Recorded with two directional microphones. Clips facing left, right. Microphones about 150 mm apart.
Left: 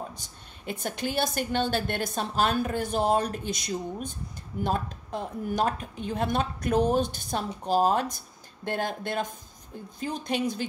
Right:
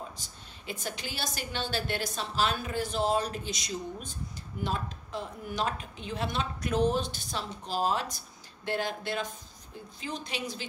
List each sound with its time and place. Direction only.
0.7 s a woman's voice: 55° left (ahead or behind)